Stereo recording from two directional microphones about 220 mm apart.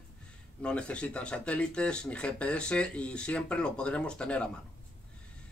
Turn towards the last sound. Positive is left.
turn(degrees=5)  # may be behind; listen again after turning